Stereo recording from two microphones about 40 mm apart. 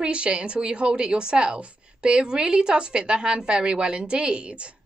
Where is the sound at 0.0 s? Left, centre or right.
Right.